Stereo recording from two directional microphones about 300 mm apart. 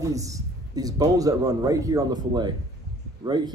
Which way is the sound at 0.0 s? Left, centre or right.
Centre.